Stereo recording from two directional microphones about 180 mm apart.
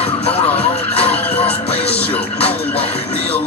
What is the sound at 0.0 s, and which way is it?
Music, 35° left (ahead or behind).